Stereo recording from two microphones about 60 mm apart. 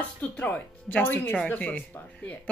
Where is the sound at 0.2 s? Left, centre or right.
Left.